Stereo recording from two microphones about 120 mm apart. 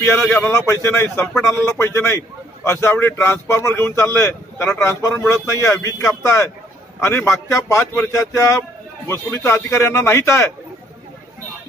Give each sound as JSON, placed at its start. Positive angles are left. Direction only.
{"t": 0.2, "sound": "a man's voice", "side_deg": 10}
{"t": 0.6, "sound": "a man's voice", "side_deg": 20}